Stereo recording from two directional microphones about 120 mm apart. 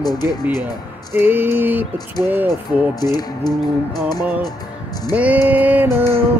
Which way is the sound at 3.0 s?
35° left (ahead or behind).